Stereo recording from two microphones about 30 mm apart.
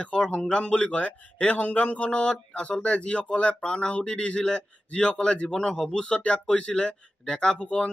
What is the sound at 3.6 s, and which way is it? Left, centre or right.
Speech, left.